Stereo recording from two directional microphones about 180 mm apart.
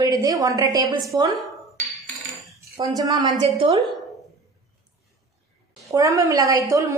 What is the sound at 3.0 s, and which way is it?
Speech, 20° right (ahead or behind).